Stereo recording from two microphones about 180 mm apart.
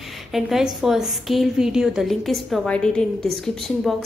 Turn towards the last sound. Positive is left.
turn(degrees=0)  # may be behind; listen again after turning